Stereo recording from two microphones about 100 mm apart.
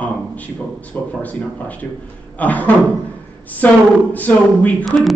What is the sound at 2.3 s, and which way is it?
Speech, 15° left (ahead or behind).